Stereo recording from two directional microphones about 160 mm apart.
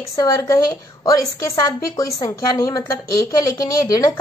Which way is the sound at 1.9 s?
20° left (ahead or behind).